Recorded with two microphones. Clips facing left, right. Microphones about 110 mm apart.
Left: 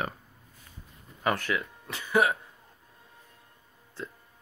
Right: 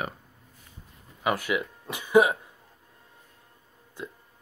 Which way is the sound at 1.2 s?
10° right (ahead or behind).